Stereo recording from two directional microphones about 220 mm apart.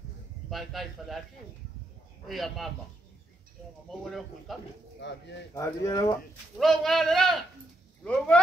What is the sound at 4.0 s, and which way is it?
Speech, centre (ahead or behind).